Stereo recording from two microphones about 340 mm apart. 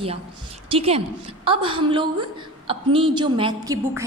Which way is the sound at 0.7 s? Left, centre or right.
Centre.